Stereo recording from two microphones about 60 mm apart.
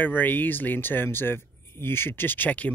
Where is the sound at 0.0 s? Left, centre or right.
Left.